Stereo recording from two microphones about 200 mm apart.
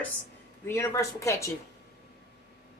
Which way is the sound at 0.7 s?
15° left (ahead or behind).